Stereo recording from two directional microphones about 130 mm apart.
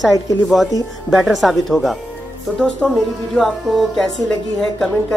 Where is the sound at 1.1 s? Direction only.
Centre (ahead or behind).